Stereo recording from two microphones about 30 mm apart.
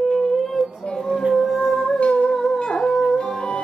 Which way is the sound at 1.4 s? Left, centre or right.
Centre.